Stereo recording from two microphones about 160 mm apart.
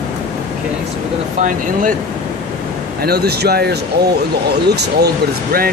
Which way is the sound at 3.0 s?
80° right.